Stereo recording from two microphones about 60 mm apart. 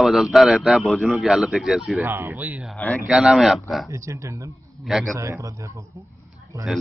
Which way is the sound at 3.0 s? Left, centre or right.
Centre.